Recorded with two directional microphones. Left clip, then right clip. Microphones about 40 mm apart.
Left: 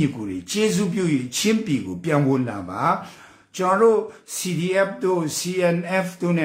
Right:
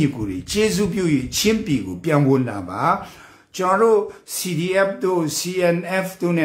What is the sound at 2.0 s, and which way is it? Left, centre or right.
Speech, right.